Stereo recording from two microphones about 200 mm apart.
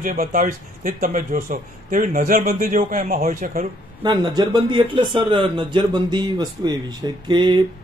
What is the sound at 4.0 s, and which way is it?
Speech, 20° right (ahead or behind).